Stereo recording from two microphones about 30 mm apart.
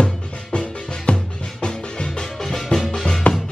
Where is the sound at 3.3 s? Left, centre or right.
Left.